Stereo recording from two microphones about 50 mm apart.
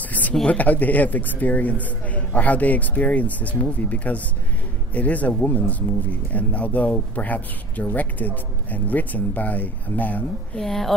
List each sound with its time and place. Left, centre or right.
0.0 s a sound: left
0.5 s a man's voice: left
10.6 s a woman's voice: centre